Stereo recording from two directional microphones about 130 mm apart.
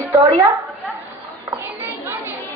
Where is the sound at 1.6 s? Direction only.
15° right (ahead or behind).